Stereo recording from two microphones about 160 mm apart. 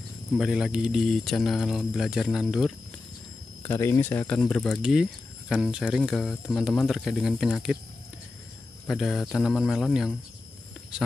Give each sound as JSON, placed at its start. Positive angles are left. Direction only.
{"t": 0.4, "sound": "speech", "side_deg": -5}
{"t": 3.6, "sound": "speech", "side_deg": 15}
{"t": 8.8, "sound": "speech", "side_deg": 0}